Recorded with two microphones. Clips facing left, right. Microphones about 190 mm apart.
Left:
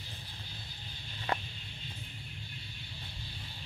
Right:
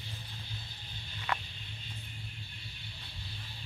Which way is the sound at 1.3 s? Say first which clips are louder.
Left 2 dB; 30° left (ahead or behind).